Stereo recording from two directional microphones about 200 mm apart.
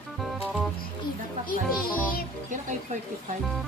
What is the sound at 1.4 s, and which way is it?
Music, 45° left (ahead or behind).